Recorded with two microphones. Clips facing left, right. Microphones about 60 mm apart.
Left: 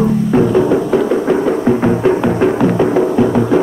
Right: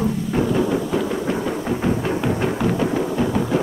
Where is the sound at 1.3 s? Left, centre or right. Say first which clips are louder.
Left 10 dB; left.